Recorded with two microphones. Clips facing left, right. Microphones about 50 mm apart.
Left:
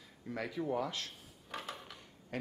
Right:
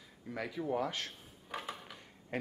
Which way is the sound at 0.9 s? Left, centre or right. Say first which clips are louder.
Right 2 dB; right.